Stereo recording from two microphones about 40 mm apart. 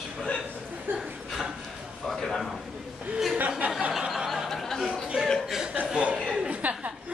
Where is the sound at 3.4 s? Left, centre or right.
Right.